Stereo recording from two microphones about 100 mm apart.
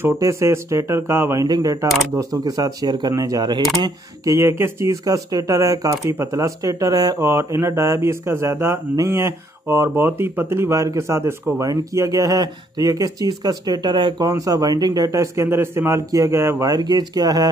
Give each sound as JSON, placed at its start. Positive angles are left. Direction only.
{"t": 0.2, "sound": "speech", "side_deg": -30}
{"t": 7.2, "sound": "speech", "side_deg": -25}
{"t": 14.2, "sound": "speech", "side_deg": -35}